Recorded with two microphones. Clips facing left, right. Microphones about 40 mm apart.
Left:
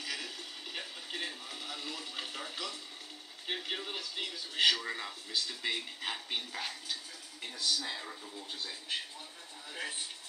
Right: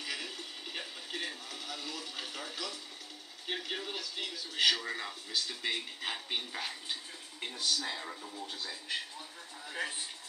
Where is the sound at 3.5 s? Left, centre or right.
Centre.